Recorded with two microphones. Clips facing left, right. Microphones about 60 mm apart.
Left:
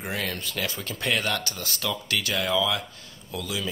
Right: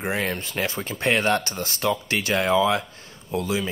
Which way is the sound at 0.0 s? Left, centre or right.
Right.